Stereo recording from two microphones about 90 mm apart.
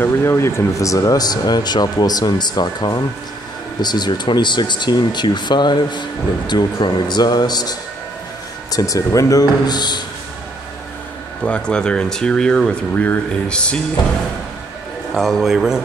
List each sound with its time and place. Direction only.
0.0 s speech: 25° left (ahead or behind); by 7.7 s 50° left (ahead or behind)
8.7 s speech: 40° left (ahead or behind)
11.4 s speech: 10° left (ahead or behind)
15.1 s a man's voice: centre (ahead or behind)